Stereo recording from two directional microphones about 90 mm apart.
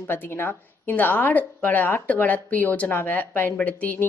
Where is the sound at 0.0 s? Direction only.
25° left (ahead or behind).